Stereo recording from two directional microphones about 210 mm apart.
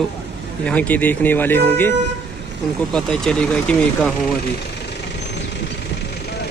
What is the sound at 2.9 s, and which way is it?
Speech, centre (ahead or behind).